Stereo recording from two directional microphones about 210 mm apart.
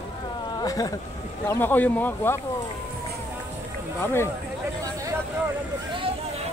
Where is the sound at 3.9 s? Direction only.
10° left (ahead or behind).